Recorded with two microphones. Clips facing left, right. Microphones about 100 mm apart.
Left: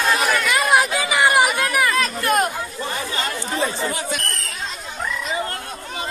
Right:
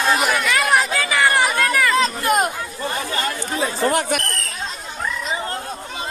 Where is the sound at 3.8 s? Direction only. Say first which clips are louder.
Right 6 dB; 65° right (ahead or behind).